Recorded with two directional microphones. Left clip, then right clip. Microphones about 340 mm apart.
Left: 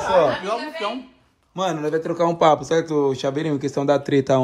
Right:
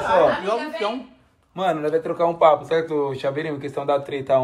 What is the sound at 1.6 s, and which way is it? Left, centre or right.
Speech, centre.